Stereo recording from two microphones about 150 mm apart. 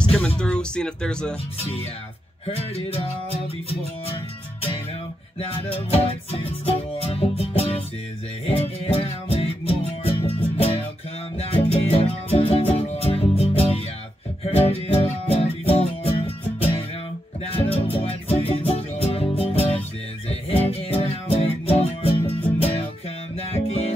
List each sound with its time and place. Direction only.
0.4 s speech: 5° left (ahead or behind)
2.4 s music: 40° left (ahead or behind)
5.7 s music: 40° left (ahead or behind)
17.6 s music: 40° left (ahead or behind)